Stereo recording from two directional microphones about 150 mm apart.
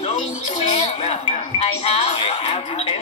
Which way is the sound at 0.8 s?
45° left (ahead or behind).